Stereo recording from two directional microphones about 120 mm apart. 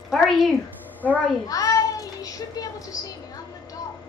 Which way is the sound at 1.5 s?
30° left (ahead or behind).